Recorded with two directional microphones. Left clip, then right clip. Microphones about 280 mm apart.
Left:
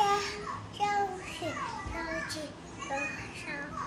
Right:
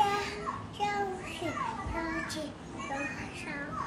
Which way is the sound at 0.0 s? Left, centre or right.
Centre.